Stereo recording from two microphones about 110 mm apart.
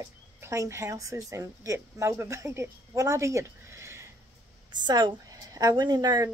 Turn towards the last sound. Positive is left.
turn(degrees=-35)  # may be behind; listen again after turning